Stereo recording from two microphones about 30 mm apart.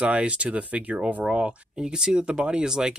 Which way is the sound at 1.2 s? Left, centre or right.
Right.